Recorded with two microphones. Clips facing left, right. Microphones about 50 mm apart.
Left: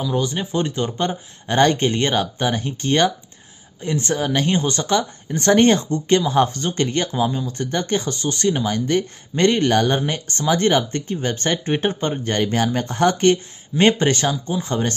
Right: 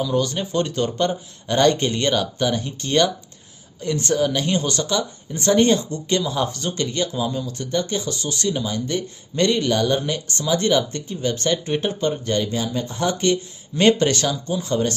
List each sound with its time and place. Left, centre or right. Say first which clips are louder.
0.0 s speech: right 1 dB; centre; by 7.2 s left
7.2 s speech: left 2 dB; left
7.5 s speech: left 2 dB; left
12.4 s speech: left 3 dB; left
13.7 s speech: even; left